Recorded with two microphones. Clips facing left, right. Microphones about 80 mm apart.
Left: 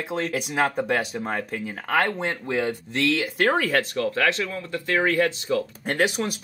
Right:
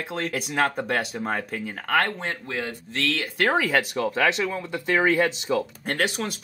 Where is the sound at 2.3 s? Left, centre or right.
Left.